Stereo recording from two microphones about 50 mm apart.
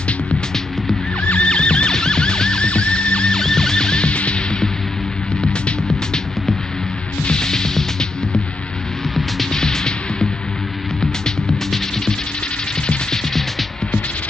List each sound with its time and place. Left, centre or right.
1.3 s music: left
7.2 s music: centre